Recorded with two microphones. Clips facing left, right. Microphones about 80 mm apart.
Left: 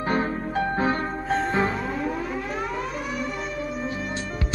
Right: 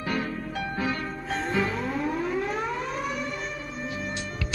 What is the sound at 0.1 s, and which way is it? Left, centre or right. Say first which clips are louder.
Music: left 5 dB; left.